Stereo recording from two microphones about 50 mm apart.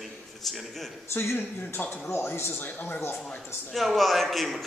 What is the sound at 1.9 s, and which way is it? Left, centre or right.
Speech, left.